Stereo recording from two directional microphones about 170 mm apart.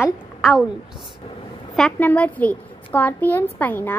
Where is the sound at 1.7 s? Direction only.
5° left (ahead or behind).